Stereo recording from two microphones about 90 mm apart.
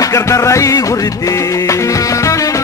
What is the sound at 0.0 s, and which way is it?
Music, 35° left (ahead or behind).